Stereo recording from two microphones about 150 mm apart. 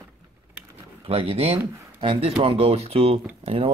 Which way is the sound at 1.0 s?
40° right (ahead or behind).